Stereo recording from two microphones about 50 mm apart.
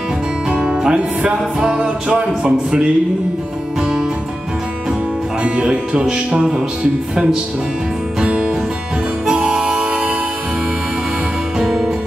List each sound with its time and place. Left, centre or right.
0.5 s music: centre
2.0 s a man's voice: right
3.8 s music: centre
5.4 s music: centre
11.5 s music: centre